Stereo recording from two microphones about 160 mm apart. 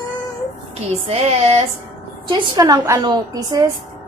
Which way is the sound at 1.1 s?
40° right (ahead or behind).